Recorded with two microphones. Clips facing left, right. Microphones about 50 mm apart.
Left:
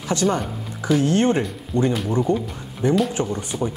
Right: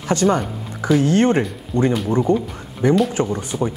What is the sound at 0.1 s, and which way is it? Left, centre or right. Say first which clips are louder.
Speech: right 4 dB; right.